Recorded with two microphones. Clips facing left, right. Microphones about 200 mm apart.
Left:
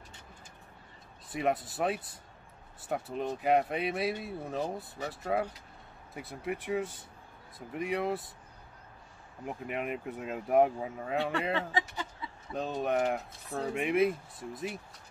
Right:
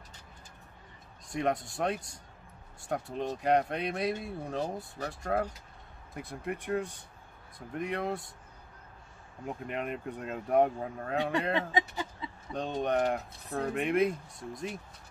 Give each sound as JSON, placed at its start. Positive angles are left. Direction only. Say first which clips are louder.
{"t": 1.3, "sound": "speech", "louder": "even", "side_deg": 5}
{"t": 9.4, "sound": "speech", "louder": "even", "side_deg": 5}
{"t": 11.7, "sound": "a sound", "louder": "right 2 dB", "side_deg": -20}
{"t": 12.5, "sound": "speech", "louder": "right 1 dB", "side_deg": 5}